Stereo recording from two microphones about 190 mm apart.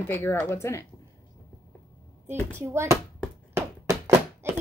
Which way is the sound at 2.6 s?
15° right (ahead or behind).